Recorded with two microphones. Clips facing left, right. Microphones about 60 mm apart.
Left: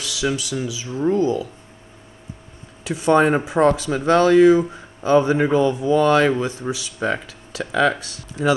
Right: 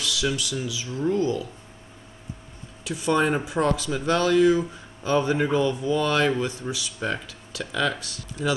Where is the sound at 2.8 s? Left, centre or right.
Left.